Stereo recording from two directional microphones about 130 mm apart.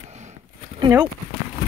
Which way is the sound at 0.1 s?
65° right (ahead or behind).